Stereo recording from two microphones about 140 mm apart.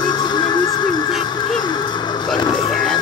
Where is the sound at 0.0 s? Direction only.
30° left (ahead or behind).